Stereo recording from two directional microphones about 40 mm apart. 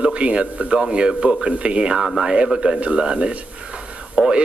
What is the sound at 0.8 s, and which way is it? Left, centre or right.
A man's voice, right.